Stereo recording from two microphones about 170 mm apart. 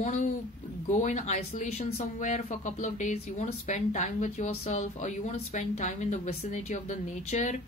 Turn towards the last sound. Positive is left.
turn(degrees=45)  # may be behind; listen again after turning